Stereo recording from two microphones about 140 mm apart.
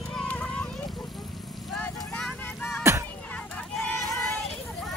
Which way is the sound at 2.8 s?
20° right (ahead or behind).